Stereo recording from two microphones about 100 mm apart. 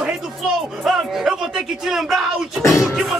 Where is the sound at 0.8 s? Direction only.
5° right (ahead or behind).